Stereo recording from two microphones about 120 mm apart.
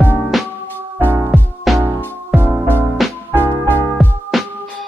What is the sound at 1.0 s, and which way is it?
Music, 20° right (ahead or behind).